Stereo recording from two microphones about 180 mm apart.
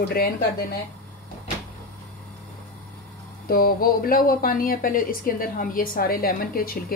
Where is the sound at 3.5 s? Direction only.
55° left (ahead or behind).